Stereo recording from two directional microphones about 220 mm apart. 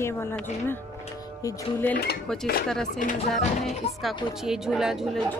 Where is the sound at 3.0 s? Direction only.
35° left (ahead or behind).